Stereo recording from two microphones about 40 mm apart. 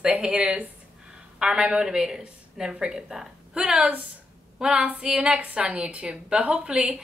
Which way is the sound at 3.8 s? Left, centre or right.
Right.